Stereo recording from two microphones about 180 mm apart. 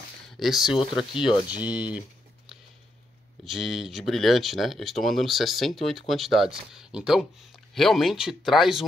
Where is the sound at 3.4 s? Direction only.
Centre (ahead or behind).